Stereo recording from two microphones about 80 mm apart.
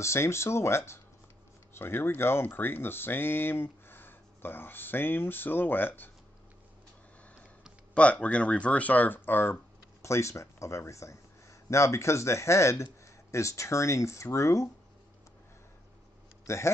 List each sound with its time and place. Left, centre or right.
0.0 s speech: left
7.9 s speech: centre
10.0 s speech: left
16.4 s speech: left